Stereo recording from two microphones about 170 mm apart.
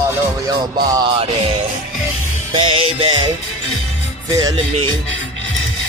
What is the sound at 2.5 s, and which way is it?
Speech, 30° right (ahead or behind).